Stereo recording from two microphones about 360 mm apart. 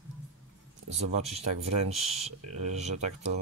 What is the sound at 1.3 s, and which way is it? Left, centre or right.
Speech, centre.